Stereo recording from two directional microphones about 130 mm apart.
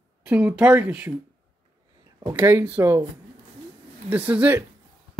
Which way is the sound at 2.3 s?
15° right (ahead or behind).